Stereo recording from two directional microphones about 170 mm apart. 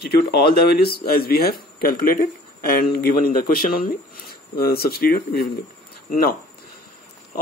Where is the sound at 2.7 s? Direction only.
60° left (ahead or behind).